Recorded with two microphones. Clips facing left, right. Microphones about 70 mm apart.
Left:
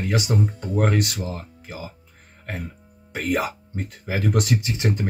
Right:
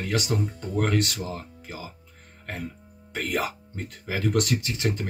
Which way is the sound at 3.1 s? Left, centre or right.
Centre.